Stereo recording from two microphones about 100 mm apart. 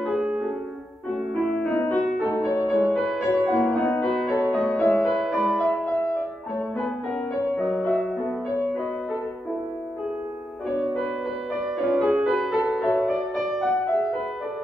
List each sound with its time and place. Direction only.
0.0 s music: centre (ahead or behind)
1.4 s music: 5° left (ahead or behind)
2.3 s music: 35° left (ahead or behind)
2.9 s music: centre (ahead or behind)
4.7 s music: 15° left (ahead or behind)
5.0 s music: centre (ahead or behind)
7.5 s music: 15° left (ahead or behind)
11.8 s music: centre (ahead or behind)